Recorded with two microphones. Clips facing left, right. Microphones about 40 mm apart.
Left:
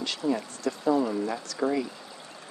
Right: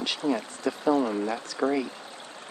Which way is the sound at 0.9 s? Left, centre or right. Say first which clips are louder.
Right 1 dB; right.